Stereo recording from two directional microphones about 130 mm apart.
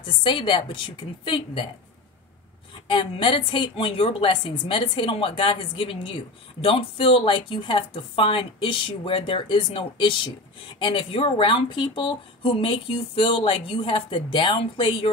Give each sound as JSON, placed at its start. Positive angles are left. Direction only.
{"t": 0.0, "sound": "a woman's voice", "side_deg": 40}
{"t": 2.7, "sound": "a woman's voice", "side_deg": 40}